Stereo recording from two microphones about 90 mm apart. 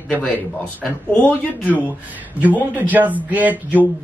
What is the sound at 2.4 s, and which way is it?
Speech, 20° right (ahead or behind).